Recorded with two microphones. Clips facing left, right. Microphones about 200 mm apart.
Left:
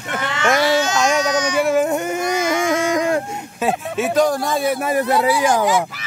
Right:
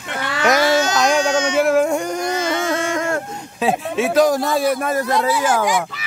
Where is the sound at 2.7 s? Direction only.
15° left (ahead or behind).